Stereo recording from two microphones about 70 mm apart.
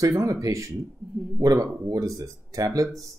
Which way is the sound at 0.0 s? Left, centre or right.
Right.